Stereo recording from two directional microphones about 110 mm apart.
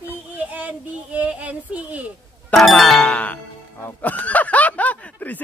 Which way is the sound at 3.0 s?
15° left (ahead or behind).